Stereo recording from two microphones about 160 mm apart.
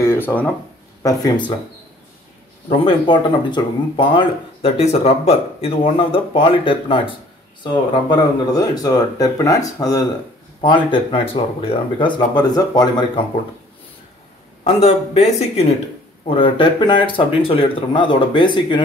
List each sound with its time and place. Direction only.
0.0 s a sound: 15° left (ahead or behind)
1.0 s speech: 25° left (ahead or behind)
2.8 s speech: 30° left (ahead or behind)
14.6 s speech: 40° left (ahead or behind)
16.3 s speech: 30° left (ahead or behind)